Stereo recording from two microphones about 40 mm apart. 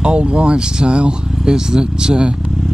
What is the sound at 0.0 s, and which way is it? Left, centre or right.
Speech, right.